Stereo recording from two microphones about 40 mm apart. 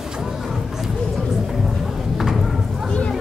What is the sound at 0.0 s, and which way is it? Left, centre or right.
Music, centre.